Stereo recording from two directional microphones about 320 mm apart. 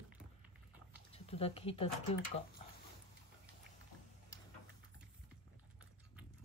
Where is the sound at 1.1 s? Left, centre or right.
Centre.